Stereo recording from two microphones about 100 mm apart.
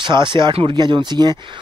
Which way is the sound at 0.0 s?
50° right (ahead or behind).